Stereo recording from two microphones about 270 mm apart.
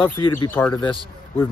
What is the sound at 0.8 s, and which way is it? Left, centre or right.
Speech, centre.